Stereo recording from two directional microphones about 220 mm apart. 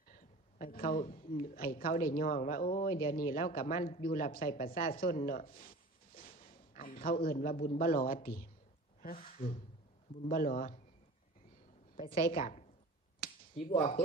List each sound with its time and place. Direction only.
0.1 s speech: 40° left (ahead or behind)
12.0 s speech: 40° left (ahead or behind)
13.7 s speech: 30° left (ahead or behind)